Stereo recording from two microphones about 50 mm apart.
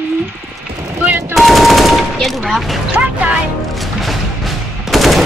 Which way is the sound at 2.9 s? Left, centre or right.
Right.